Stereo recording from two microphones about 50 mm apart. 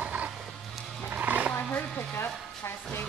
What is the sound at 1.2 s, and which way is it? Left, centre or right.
Roaring cats, right.